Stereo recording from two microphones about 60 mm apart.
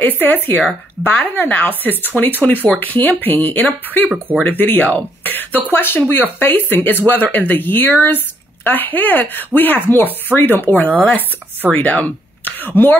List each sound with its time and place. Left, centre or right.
0.0 s speech: left